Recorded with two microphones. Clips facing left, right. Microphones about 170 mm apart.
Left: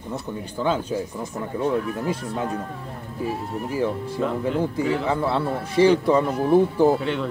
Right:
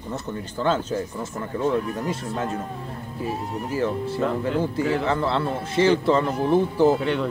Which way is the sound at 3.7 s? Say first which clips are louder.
Even; 15° left (ahead or behind).